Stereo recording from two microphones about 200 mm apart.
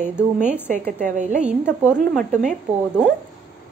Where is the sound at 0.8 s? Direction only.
40° right (ahead or behind).